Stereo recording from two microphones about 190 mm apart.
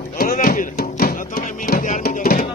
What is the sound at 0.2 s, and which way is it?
Music, 50° left (ahead or behind).